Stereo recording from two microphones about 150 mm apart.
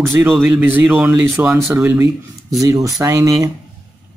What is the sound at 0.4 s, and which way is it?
Speech, 10° right (ahead or behind).